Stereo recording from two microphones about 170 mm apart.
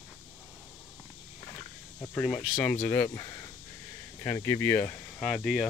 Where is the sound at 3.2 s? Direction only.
25° left (ahead or behind); by 5.7 s 5° left (ahead or behind).